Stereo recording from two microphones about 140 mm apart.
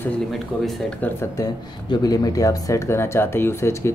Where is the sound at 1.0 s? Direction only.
20° left (ahead or behind).